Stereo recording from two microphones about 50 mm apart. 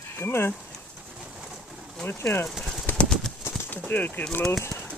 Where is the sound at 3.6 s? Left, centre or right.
Left.